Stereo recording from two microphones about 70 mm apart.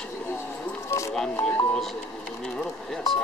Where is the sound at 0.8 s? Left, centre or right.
Left.